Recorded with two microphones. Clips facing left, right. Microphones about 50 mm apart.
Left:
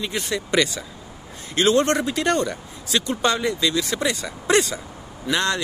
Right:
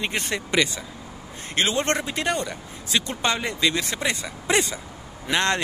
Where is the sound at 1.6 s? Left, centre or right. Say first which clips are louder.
Left 5 dB; right.